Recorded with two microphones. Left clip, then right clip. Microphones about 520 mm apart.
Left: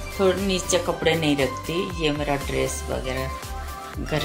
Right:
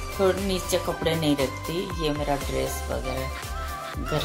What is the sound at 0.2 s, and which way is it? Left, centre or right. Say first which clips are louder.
Speech: left 2 dB; right.